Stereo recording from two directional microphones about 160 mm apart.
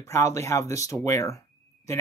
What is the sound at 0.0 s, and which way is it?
Speech, 20° left (ahead or behind).